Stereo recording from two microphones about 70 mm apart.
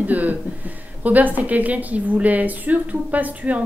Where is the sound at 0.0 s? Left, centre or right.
Right.